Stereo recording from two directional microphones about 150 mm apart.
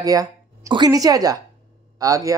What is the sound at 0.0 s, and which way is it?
Speech, 25° right (ahead or behind).